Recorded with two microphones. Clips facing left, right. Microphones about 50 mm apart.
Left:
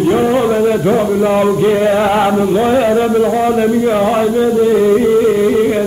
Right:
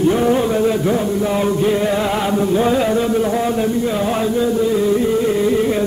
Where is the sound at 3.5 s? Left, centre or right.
Left.